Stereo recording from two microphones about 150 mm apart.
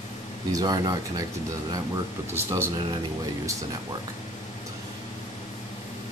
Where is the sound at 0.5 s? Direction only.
25° right (ahead or behind).